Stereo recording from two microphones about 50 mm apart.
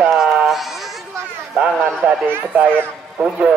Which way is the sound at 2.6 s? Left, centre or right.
Right.